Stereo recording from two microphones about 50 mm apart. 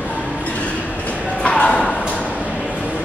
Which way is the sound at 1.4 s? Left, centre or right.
Centre.